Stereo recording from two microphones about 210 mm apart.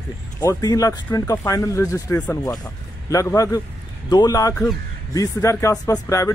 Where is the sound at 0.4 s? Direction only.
15° left (ahead or behind).